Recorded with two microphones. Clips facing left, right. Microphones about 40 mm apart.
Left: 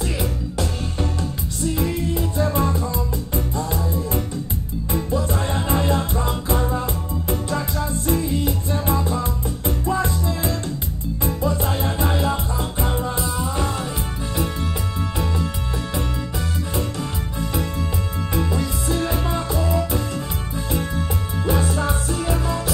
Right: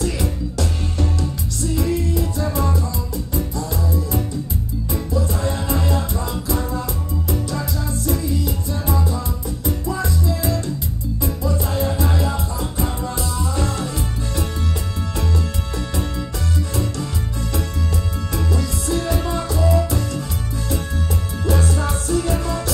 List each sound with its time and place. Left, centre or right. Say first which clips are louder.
0.0 s music: right 2 dB; centre
18.3 s music: left 1 dB; centre